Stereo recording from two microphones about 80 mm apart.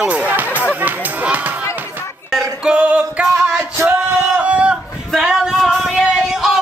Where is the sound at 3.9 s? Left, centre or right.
Centre.